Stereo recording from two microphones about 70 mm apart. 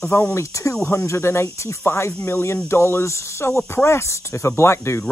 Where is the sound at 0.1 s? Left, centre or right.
Left.